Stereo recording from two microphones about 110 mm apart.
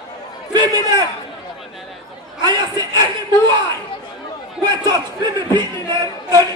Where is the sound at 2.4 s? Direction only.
40° right (ahead or behind).